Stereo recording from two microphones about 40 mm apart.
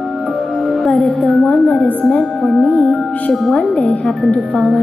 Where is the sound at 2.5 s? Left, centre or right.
Left.